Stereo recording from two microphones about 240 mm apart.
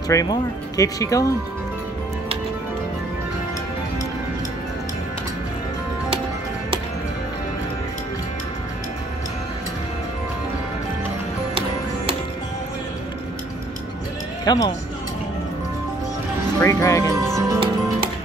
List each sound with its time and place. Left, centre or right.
0.1 s speech: centre
14.4 s speech: centre
16.5 s speech: centre
17.4 s music: centre